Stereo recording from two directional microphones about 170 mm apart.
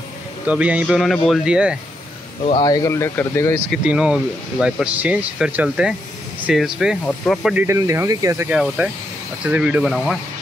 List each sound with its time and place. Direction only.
0.5 s speech: 10° right (ahead or behind)
2.6 s speech: 20° left (ahead or behind)
3.7 s speech: 5° right (ahead or behind)
7.5 s speech: 15° right (ahead or behind)
8.5 s speech: 5° right (ahead or behind)